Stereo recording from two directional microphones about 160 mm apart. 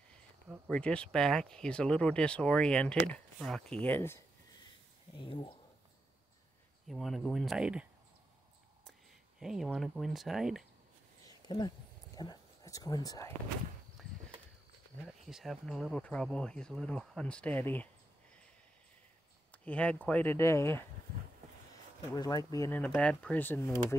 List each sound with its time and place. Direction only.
0.7 s speech: 5° left (ahead or behind)
5.1 s speech: 30° left (ahead or behind)
6.9 s speech: centre (ahead or behind)
9.4 s speech: 5° right (ahead or behind)
11.2 s a sound: 25° left (ahead or behind)
12.2 s speech: 25° left (ahead or behind)
15.0 s speech: centre (ahead or behind)
19.5 s speech: 10° left (ahead or behind)
22.1 s speech: 25° left (ahead or behind)
22.8 s speech: 5° left (ahead or behind)